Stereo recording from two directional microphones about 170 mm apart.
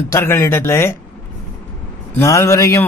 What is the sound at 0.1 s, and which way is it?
Speech, 15° left (ahead or behind).